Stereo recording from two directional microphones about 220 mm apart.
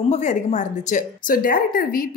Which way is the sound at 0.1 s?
35° left (ahead or behind).